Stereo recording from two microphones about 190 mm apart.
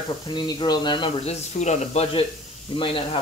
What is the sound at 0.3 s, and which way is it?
Speech, 25° left (ahead or behind).